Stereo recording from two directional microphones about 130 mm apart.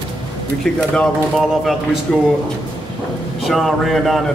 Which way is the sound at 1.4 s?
5° right (ahead or behind).